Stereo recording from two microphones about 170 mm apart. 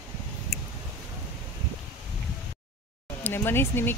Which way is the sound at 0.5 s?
Centre (ahead or behind).